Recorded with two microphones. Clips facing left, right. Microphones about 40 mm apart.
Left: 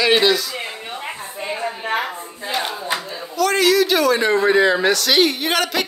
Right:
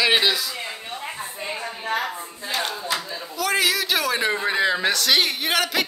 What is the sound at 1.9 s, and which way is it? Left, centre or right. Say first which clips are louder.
Speech: left 2 dB; left.